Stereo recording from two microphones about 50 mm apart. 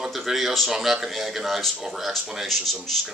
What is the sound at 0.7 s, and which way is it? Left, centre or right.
Speech, centre.